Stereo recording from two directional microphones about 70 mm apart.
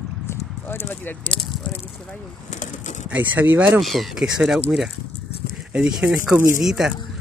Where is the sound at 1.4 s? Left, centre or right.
Centre.